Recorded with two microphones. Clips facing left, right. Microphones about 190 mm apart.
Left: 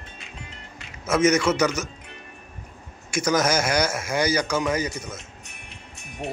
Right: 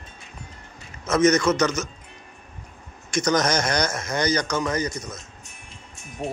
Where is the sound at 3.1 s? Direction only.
5° left (ahead or behind).